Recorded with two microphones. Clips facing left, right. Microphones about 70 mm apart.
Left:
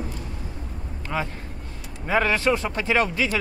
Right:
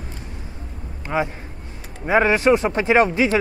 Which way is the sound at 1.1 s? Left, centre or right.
Right.